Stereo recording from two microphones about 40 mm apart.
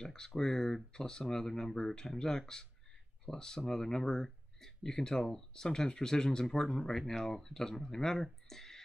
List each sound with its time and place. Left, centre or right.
0.0 s speech: centre
6.9 s speech: centre